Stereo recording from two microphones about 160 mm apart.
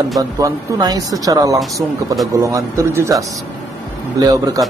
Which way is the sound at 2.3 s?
20° right (ahead or behind).